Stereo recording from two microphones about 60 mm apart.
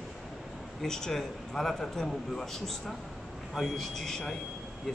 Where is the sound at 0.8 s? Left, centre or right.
Centre.